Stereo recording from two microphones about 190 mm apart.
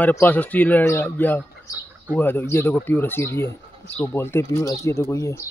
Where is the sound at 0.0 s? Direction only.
10° left (ahead or behind).